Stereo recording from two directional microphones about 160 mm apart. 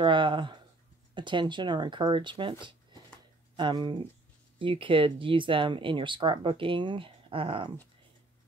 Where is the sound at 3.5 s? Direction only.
30° right (ahead or behind).